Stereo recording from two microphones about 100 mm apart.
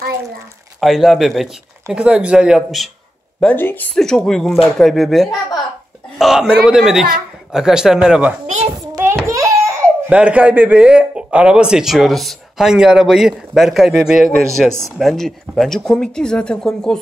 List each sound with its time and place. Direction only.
0.7 s speech: centre (ahead or behind)
3.5 s a woman's voice: 20° left (ahead or behind)
3.9 s speech: 5° left (ahead or behind); by 8.4 s 10° right (ahead or behind)
9.0 s a sound: 25° right (ahead or behind)
10.0 s speech: 10° right (ahead or behind); by 17.0 s 5° left (ahead or behind)